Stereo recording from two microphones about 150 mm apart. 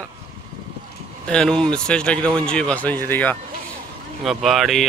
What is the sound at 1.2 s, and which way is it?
Speech, 5° left (ahead or behind).